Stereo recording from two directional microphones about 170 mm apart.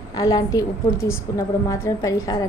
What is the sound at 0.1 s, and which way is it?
A woman's voice, 20° left (ahead or behind).